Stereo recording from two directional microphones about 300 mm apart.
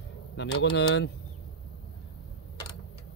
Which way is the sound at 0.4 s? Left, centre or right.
Left.